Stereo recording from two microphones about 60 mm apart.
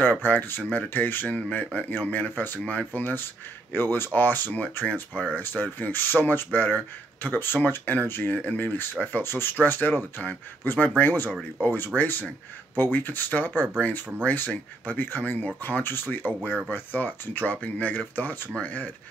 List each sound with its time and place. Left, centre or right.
0.2 s speech: left
16.3 s speech: centre
16.7 s speech: left